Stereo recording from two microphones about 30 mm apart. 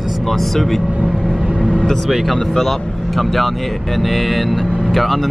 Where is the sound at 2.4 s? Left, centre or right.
Centre.